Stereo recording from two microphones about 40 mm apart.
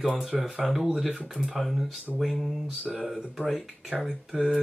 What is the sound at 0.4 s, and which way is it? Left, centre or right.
Speech, centre.